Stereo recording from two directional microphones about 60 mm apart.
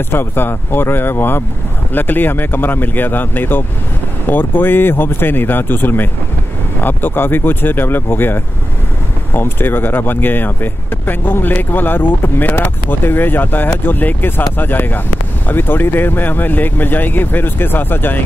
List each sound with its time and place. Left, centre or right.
0.1 s speech: left